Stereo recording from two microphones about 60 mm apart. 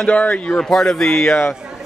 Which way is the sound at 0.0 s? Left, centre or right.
Left.